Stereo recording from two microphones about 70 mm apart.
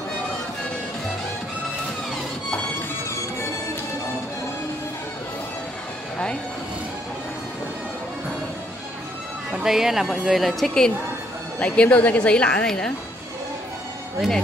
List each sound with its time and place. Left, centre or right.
9.5 s a woman's voice: centre
11.6 s a woman's voice: centre